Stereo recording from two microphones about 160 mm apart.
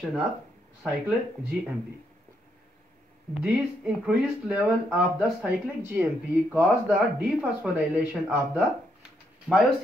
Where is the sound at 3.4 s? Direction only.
5° right (ahead or behind).